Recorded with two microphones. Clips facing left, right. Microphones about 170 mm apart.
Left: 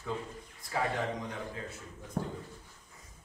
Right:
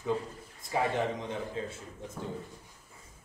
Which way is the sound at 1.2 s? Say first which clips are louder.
Right 4 dB; 25° right (ahead or behind).